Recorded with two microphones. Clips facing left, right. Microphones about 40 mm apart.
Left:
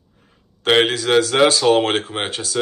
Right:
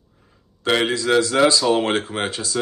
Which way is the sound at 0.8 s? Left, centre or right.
Left.